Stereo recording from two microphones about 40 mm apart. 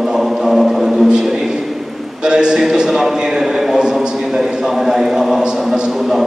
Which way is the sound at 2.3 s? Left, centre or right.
Right.